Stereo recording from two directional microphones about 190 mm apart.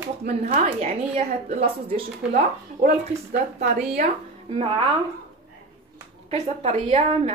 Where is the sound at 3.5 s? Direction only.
35° right (ahead or behind).